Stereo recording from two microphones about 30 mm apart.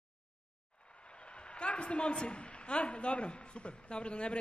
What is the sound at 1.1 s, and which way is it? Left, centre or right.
A woman's voice, left.